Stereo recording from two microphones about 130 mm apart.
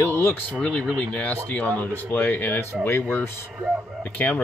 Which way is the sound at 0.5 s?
10° left (ahead or behind).